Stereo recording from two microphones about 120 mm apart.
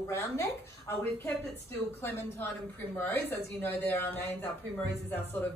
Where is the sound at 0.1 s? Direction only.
25° left (ahead or behind).